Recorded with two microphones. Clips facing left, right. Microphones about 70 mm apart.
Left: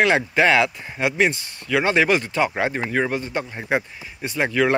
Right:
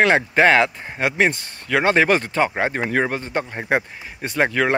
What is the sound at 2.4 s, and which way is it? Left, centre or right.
Speech, right.